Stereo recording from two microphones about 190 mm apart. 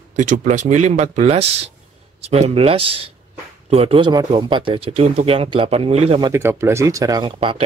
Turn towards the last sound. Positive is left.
turn(degrees=-25)  # may be behind; listen again after turning